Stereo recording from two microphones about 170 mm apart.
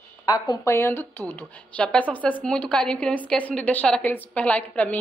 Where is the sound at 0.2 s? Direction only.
20° left (ahead or behind).